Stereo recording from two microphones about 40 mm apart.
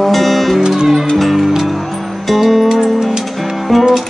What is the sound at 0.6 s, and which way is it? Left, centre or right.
Speech, centre.